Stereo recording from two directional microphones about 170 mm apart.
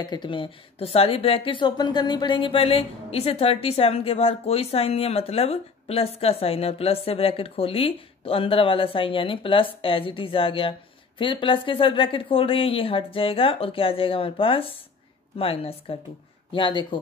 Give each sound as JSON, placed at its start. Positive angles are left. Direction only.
{"t": 0.0, "sound": "a woman's voice", "side_deg": 25}